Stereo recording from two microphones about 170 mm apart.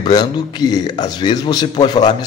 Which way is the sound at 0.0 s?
25° left (ahead or behind).